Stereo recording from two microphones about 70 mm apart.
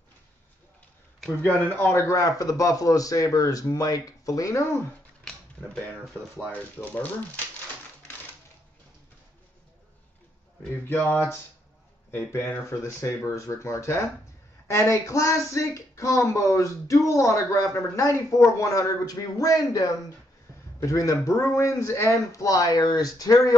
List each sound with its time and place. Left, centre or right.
1.4 s speech: left
2.0 s a man's voice: left
5.2 s typewriter: centre
6.5 s speech: left
10.9 s speech: left
20.8 s speech: left